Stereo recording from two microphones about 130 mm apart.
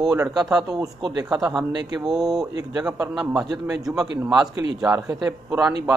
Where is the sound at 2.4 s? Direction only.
30° right (ahead or behind).